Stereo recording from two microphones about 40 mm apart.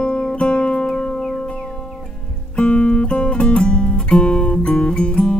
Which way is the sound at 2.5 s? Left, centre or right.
Left.